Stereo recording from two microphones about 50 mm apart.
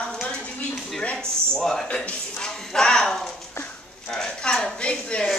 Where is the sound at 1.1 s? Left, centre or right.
Centre.